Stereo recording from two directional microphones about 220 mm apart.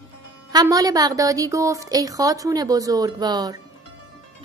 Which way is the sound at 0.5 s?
15° right (ahead or behind).